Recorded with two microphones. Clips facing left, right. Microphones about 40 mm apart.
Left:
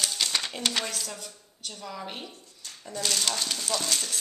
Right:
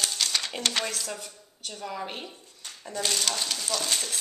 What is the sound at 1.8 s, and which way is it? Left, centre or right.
Speech, centre.